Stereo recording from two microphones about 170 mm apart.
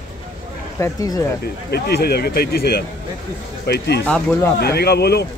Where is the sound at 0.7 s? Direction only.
20° left (ahead or behind).